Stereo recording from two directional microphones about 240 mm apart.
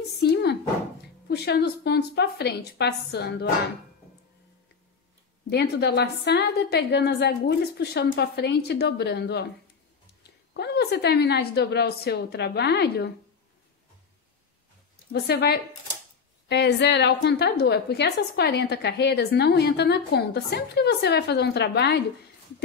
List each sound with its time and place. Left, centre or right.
0.2 s a sound: left
1.2 s a woman's voice: left
5.5 s a woman's voice: left
10.5 s a woman's voice: left
15.1 s a woman's voice: left